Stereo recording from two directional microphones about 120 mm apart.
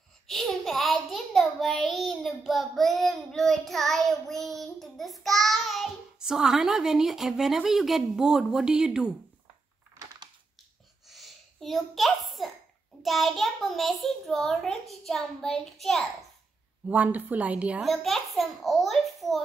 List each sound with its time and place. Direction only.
0.3 s child singing: centre (ahead or behind)
11.1 s a sound: centre (ahead or behind)
13.0 s a child's voice: centre (ahead or behind)
16.9 s a woman's voice: 15° right (ahead or behind)
17.8 s a child's voice: centre (ahead or behind)